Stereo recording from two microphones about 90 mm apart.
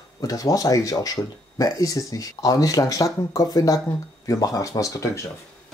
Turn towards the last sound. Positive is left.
turn(degrees=35)  # may be behind; listen again after turning